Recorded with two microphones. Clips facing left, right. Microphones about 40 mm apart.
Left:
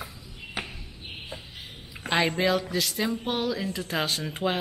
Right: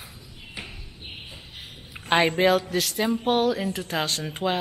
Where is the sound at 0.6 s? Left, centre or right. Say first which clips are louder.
Left 4 dB; left.